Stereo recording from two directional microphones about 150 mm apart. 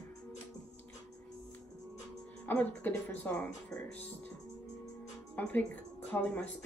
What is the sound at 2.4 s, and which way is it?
A woman's voice, 10° left (ahead or behind).